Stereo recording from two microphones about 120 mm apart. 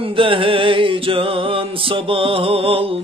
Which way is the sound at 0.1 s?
45° right (ahead or behind).